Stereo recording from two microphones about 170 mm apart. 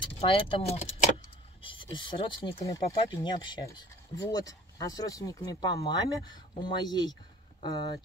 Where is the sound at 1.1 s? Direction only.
30° left (ahead or behind).